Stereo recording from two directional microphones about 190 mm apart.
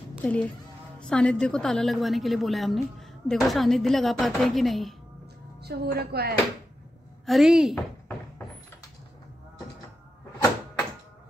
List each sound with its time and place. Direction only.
0.2 s a woman's voice: 5° left (ahead or behind)
5.6 s a woman's voice: 55° right (ahead or behind)
7.2 s a woman's voice: centre (ahead or behind)